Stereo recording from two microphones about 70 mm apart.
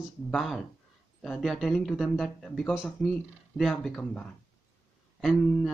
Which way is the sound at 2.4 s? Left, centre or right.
Centre.